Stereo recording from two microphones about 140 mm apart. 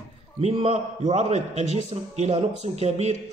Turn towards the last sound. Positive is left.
turn(degrees=-50)  # may be behind; listen again after turning